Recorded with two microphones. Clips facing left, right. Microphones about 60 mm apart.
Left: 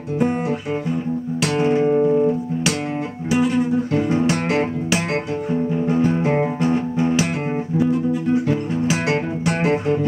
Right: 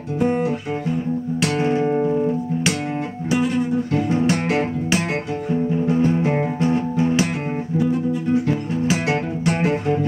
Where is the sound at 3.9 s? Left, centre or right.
Left.